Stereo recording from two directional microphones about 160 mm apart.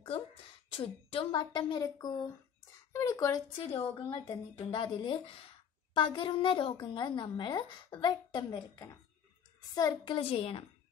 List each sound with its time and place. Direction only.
0.0 s a woman's voice: 35° left (ahead or behind)